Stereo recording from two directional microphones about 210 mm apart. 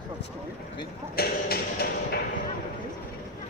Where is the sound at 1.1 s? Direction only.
45° left (ahead or behind).